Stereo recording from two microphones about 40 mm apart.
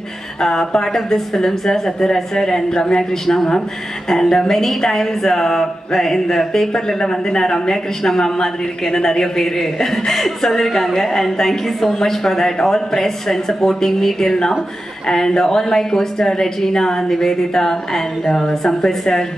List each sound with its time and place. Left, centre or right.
0.4 s speech: centre